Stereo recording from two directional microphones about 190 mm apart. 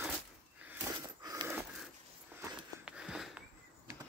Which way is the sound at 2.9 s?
5° right (ahead or behind).